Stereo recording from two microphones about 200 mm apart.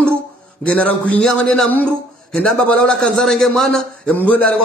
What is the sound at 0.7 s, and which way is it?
A man's voice, 5° left (ahead or behind).